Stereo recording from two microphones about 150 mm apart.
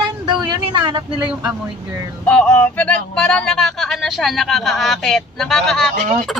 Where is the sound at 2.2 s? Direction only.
5° left (ahead or behind).